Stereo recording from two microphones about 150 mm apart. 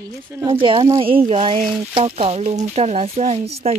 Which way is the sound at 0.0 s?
15° right (ahead or behind).